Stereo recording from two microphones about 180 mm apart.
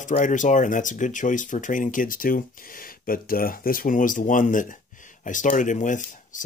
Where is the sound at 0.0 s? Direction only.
45° left (ahead or behind).